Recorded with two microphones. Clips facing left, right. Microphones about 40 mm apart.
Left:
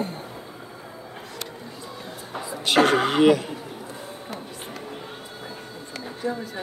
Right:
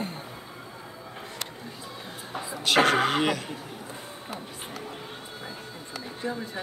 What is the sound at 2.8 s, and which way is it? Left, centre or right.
Speech, centre.